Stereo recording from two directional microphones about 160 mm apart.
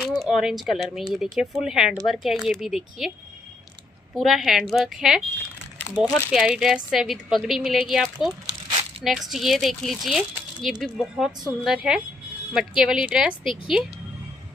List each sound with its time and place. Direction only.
0.2 s a woman's voice: centre (ahead or behind)
4.1 s a woman's voice: centre (ahead or behind)
8.5 s a sound: 30° right (ahead or behind)
9.0 s a woman's voice: centre (ahead or behind)